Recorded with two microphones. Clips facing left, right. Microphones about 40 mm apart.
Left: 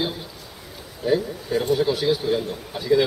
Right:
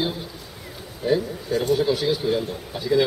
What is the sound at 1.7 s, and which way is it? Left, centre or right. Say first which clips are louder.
Speech: left 1 dB; centre.